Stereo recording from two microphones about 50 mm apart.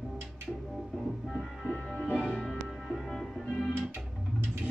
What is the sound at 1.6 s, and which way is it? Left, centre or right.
Music, centre.